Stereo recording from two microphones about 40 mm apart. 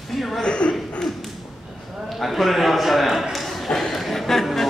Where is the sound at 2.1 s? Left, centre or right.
Centre.